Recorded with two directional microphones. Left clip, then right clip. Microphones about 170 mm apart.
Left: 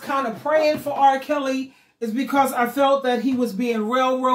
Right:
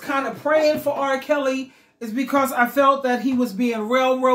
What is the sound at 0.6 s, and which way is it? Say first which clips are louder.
Speech: left 3 dB; 25° right (ahead or behind).